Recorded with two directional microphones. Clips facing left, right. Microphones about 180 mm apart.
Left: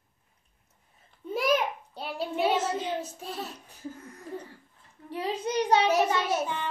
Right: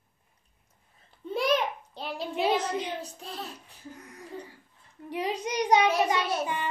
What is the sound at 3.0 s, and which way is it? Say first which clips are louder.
Speech: left 2 dB; centre (ahead or behind).